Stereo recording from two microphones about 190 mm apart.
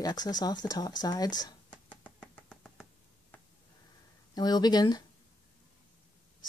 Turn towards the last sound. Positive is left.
turn(degrees=20)  # may be behind; listen again after turning